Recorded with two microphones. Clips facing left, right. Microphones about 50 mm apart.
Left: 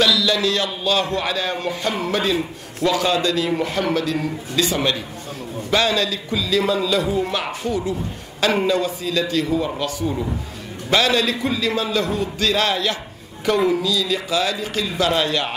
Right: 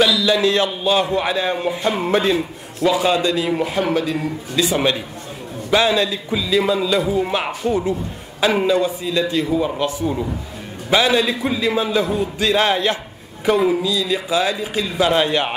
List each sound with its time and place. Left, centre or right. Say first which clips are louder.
0.0 s a man's voice: right 2 dB; centre
2.3 s a man's voice: right 2 dB; centre; by 7.9 s right
8.4 s a man's voice: right 2 dB; centre
13.5 s a man's voice: right 2 dB; centre